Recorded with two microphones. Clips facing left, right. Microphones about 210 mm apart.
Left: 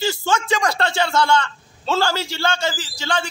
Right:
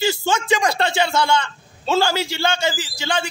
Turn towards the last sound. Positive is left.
turn(degrees=-15)  # may be behind; listen again after turning